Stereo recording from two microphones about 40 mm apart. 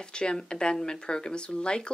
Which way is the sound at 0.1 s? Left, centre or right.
Left.